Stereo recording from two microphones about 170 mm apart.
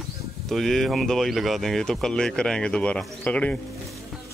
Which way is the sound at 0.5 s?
Centre (ahead or behind).